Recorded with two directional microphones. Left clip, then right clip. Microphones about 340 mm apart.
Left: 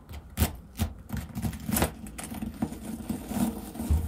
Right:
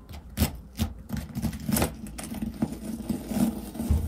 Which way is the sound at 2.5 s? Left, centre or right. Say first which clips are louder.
Right 3 dB; centre.